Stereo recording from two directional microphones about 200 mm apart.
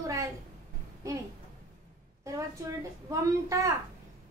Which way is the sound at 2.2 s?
15° right (ahead or behind).